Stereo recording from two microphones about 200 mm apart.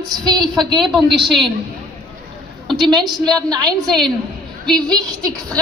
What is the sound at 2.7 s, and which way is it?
Speech, 20° right (ahead or behind).